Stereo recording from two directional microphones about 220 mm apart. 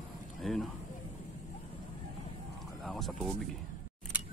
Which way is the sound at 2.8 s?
Centre (ahead or behind).